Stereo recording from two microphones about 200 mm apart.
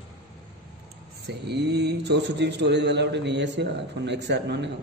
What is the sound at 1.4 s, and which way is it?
A man's voice, 55° right (ahead or behind).